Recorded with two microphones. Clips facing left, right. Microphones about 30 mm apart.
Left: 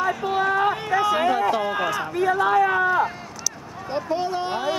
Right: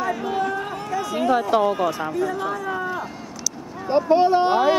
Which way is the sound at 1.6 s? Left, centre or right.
Left.